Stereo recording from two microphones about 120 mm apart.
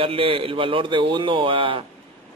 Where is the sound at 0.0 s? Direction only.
50° right (ahead or behind).